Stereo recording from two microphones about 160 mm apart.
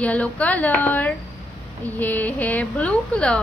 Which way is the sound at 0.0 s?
10° left (ahead or behind).